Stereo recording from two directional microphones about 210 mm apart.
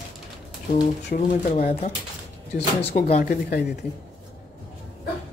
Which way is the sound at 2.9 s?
35° left (ahead or behind).